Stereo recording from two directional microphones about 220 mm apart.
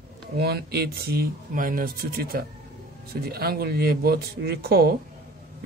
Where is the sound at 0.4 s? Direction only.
45° right (ahead or behind).